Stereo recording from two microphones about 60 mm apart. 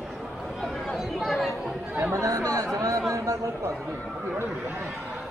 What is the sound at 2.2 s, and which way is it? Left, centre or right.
Chatter, right.